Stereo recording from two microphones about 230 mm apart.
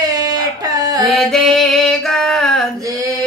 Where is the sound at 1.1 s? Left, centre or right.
Centre.